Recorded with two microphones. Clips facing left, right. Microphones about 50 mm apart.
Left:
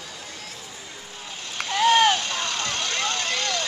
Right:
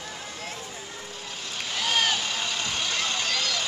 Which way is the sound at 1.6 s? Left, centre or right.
Centre.